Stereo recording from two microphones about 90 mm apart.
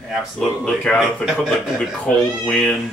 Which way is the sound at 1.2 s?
5° right (ahead or behind).